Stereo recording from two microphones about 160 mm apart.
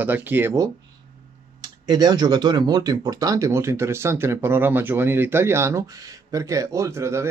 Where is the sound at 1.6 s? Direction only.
25° right (ahead or behind).